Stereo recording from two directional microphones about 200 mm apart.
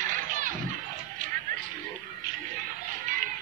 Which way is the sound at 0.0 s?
40° right (ahead or behind).